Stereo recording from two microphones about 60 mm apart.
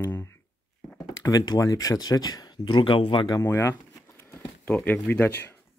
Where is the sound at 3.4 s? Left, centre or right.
Left.